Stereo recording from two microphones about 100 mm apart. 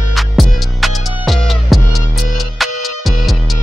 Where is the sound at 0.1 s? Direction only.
Centre (ahead or behind).